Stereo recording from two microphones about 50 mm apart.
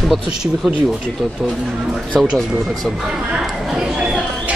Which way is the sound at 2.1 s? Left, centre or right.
Centre.